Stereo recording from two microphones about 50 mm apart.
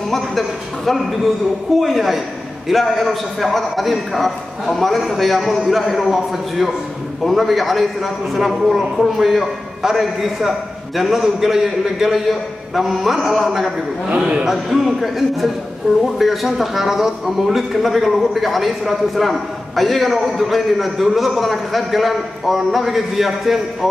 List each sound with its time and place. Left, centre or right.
0.1 s a man's voice: centre
14.0 s a man's voice: right
14.5 s a man's voice: centre